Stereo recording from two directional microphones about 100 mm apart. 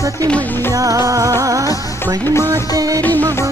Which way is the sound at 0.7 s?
35° right (ahead or behind).